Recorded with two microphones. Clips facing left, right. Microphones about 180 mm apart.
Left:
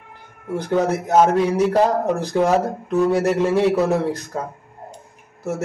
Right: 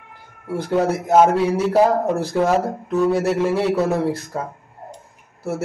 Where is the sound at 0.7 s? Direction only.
5° right (ahead or behind).